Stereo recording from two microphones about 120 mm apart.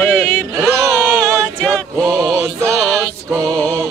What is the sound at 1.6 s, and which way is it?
Male singing, 5° left (ahead or behind).